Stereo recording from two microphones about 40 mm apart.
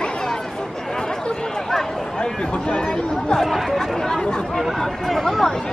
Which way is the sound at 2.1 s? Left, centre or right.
Left.